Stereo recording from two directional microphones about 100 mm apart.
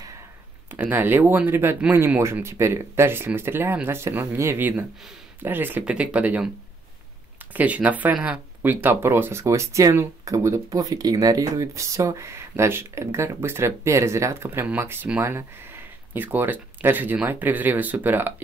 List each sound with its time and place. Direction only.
0.7 s speech: 20° right (ahead or behind)
7.5 s speech: 15° right (ahead or behind)